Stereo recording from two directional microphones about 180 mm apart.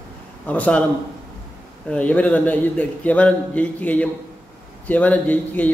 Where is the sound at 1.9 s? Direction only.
5° left (ahead or behind).